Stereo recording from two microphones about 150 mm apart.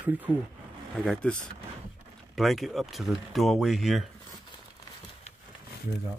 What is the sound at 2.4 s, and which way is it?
Speech, centre (ahead or behind).